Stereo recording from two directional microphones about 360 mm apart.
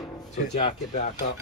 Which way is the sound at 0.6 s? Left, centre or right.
Centre.